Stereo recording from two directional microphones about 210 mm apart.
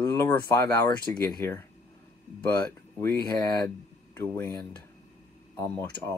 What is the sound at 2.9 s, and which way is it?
Speech, 15° left (ahead or behind).